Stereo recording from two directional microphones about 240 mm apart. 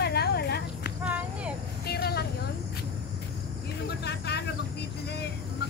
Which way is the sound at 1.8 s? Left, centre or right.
Left.